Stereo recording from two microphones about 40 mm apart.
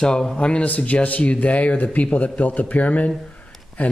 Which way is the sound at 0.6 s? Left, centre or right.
Left.